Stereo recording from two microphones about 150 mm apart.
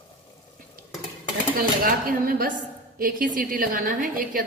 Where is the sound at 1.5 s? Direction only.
75° right (ahead or behind).